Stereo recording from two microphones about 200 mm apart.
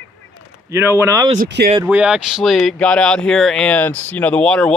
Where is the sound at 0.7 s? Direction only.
15° right (ahead or behind).